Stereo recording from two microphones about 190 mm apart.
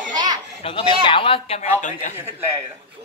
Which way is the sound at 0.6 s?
30° left (ahead or behind).